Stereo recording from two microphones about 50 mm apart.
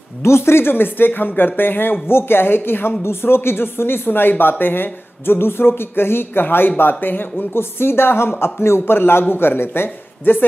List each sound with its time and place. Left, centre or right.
0.2 s speech: left